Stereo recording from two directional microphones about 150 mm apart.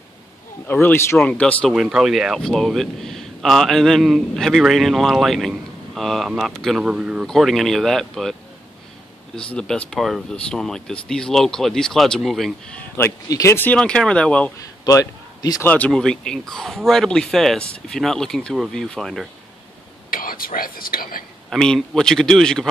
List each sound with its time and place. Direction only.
0.7 s speech: 10° left (ahead or behind)
14.9 s a man's voice: 25° left (ahead or behind)
15.7 s speech: 5° left (ahead or behind)
20.1 s speech: 70° left (ahead or behind)
21.5 s speech: centre (ahead or behind)